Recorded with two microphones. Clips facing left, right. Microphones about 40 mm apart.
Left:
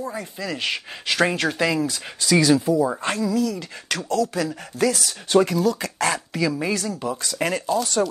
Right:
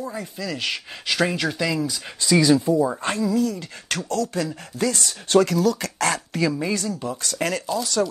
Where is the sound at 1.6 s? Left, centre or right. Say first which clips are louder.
Left 4 dB; centre.